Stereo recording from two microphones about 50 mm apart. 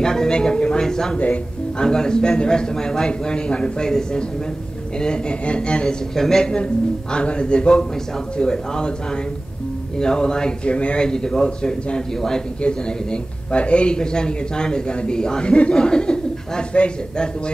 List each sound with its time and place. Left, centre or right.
0.0 s speech: centre
1.1 s a man's voice: left
1.8 s a man's voice: centre
6.1 s a man's voice: centre